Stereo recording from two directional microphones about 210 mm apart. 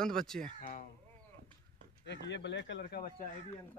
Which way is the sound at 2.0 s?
55° left (ahead or behind).